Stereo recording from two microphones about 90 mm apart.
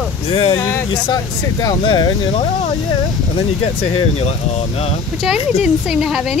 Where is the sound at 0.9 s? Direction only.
50° left (ahead or behind).